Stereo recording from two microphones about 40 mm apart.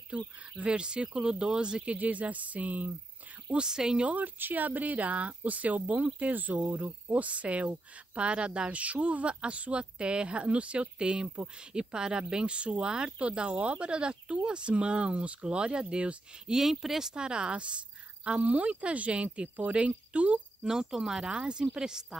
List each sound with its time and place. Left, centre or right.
0.1 s speech: right
1.9 s speech: right
3.5 s speech: centre
4.2 s speech: right
16.4 s speech: centre
17.1 s speech: right
20.6 s speech: centre